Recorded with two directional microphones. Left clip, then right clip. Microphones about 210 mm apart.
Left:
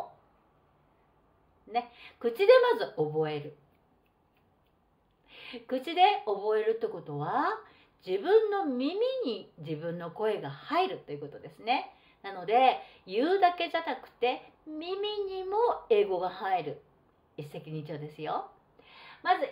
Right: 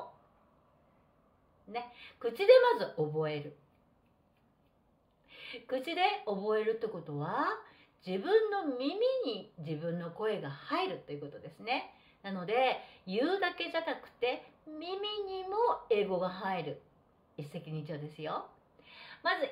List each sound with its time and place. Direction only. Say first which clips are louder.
1.7 s speech: left 8 dB; 20° left (ahead or behind)
5.3 s a woman's voice: left 2 dB; 20° left (ahead or behind)